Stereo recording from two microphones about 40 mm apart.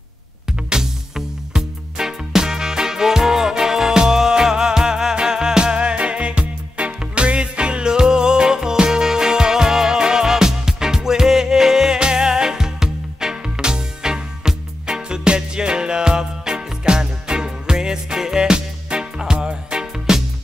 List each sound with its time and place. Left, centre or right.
0.5 s music: centre